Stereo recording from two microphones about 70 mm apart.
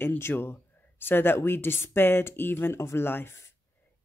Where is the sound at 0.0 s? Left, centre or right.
Left.